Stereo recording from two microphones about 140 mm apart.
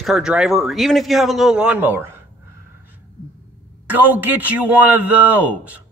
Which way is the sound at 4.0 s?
10° right (ahead or behind).